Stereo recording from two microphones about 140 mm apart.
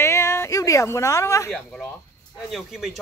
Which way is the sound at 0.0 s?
20° left (ahead or behind).